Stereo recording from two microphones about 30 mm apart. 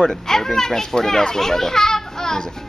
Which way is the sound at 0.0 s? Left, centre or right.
Centre.